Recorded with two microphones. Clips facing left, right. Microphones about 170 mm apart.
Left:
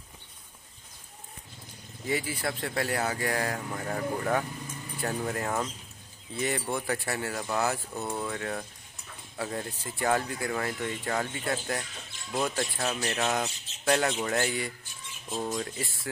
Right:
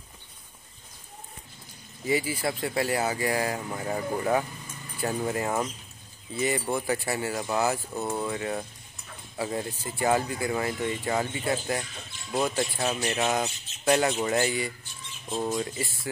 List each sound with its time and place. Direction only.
2.0 s speech: 5° right (ahead or behind)